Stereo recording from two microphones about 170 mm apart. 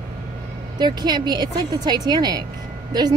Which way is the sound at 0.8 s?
25° right (ahead or behind).